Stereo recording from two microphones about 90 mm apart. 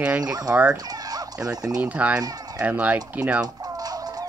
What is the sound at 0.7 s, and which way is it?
Turkey, 45° right (ahead or behind).